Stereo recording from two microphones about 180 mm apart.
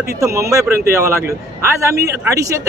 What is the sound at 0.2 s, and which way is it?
A man's voice, 15° right (ahead or behind).